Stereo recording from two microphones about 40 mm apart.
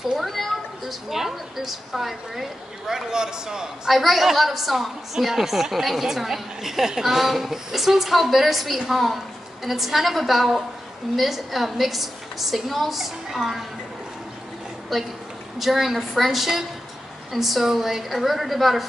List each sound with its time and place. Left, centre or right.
0.2 s cat: centre
1.1 s speech: centre
3.9 s a woman's voice: centre
14.9 s a woman's voice: centre